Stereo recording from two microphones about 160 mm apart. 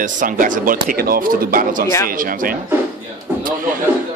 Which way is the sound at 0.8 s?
65° right (ahead or behind).